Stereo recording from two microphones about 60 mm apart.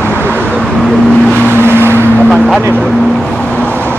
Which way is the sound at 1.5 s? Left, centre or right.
Right.